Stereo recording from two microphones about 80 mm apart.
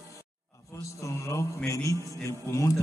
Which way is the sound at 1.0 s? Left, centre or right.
Left.